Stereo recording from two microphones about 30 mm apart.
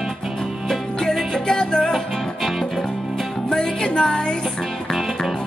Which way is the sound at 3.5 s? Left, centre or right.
Left.